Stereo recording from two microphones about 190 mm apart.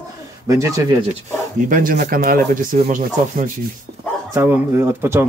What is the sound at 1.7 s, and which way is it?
Speech, 45° right (ahead or behind).